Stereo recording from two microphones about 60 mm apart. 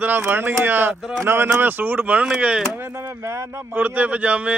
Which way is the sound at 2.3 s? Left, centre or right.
Centre.